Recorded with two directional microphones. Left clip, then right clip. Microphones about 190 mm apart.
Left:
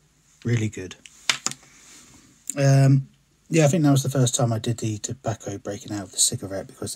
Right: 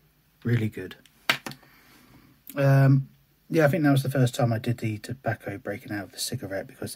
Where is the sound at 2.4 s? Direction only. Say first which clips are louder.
Left 1 dB; 15° left (ahead or behind).